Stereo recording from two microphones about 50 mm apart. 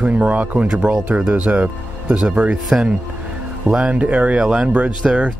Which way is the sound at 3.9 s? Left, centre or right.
Right.